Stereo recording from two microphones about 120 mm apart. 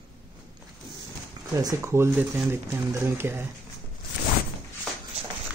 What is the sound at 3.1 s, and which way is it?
Speech, 20° right (ahead or behind).